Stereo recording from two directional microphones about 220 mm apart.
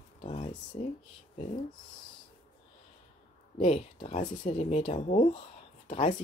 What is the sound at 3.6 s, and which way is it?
Speech, 30° left (ahead or behind).